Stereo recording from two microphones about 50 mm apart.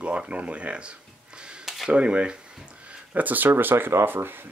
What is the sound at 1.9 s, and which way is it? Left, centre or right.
Speech, right.